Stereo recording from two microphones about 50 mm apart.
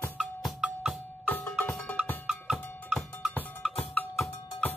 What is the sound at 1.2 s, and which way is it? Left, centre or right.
Music, left.